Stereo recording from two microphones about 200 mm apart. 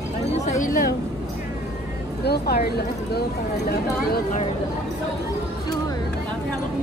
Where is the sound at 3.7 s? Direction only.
50° left (ahead or behind).